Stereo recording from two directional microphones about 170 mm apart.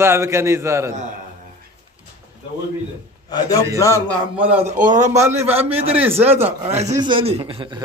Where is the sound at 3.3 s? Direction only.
25° left (ahead or behind).